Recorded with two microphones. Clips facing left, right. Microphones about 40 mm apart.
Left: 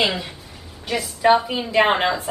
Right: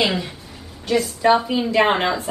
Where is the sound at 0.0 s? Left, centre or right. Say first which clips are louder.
Right 1 dB; centre.